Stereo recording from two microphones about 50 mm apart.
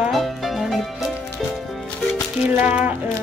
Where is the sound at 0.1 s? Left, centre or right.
Centre.